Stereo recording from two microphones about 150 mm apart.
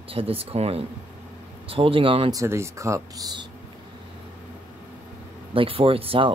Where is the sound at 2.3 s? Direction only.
20° right (ahead or behind).